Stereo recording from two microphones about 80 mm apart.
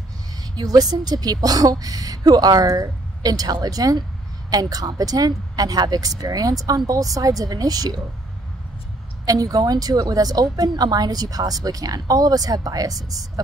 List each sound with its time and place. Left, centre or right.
0.6 s a woman's voice: right
9.2 s a woman's voice: right